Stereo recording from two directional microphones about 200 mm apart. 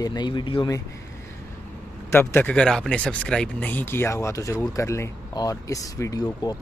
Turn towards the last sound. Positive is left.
turn(degrees=20)  # may be behind; listen again after turning